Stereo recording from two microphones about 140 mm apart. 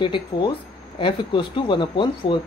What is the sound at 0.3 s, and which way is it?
A woman's voice, 30° left (ahead or behind).